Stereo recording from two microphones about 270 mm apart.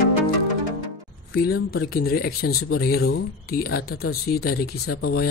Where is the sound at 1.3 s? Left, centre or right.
Left.